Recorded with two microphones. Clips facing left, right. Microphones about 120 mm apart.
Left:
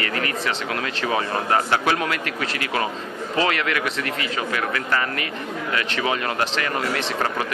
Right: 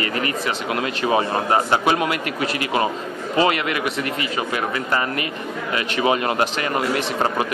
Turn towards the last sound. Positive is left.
turn(degrees=-15)  # may be behind; listen again after turning